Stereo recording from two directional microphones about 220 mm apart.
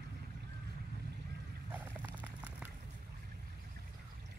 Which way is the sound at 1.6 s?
10° right (ahead or behind).